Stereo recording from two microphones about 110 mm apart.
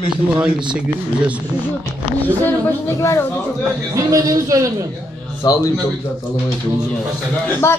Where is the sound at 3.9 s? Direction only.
30° right (ahead or behind).